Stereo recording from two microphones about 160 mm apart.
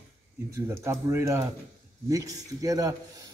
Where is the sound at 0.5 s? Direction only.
15° right (ahead or behind).